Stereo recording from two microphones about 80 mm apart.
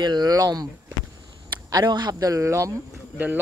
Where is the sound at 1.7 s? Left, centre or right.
Right.